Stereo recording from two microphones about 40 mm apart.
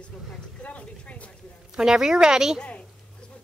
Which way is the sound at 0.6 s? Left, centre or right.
Left.